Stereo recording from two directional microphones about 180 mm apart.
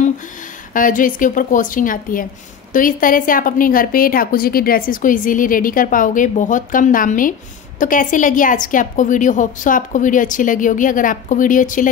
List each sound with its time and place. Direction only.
0.7 s a woman's voice: 50° left (ahead or behind)